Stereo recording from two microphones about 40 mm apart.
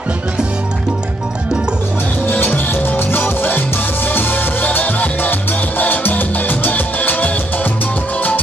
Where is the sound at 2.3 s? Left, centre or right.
Left.